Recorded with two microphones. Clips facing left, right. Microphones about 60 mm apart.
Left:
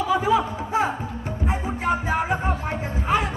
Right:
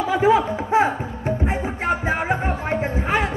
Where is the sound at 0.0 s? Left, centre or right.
Right.